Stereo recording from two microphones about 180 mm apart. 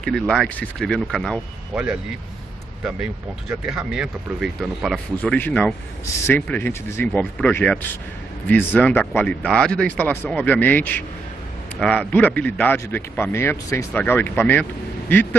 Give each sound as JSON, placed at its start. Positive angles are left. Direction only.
{"t": 0.0, "sound": "speech", "side_deg": 5}
{"t": 3.4, "sound": "speech", "side_deg": -5}